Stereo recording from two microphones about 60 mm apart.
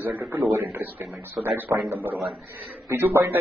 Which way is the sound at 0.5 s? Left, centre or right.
Right.